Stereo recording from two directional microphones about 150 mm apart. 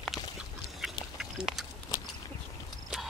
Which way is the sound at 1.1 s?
5° right (ahead or behind).